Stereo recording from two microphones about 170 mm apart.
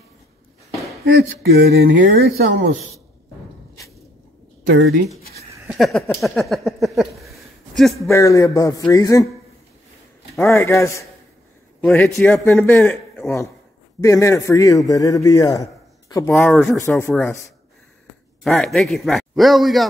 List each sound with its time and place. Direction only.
1.5 s speech: 65° right (ahead or behind)
4.6 s speech: 85° right
5.7 s speech: centre (ahead or behind)
8.1 s a man's voice: 20° left (ahead or behind)
10.3 s a man's voice: 15° left (ahead or behind)
11.8 s a man's voice: 5° left (ahead or behind)
17.1 s a man's voice: centre (ahead or behind)
18.4 s a man's voice: 5° left (ahead or behind)